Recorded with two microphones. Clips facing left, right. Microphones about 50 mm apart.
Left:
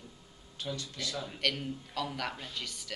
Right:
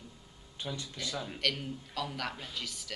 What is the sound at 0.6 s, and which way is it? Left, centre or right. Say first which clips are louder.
Speech: left 1 dB; centre.